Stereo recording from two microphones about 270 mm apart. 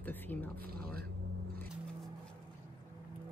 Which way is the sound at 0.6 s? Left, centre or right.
Right.